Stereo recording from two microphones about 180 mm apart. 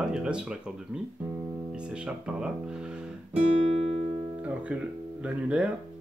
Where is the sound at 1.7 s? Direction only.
5° right (ahead or behind).